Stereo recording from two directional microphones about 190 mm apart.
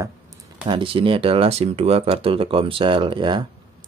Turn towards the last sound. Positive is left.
turn(degrees=-25)  # may be behind; listen again after turning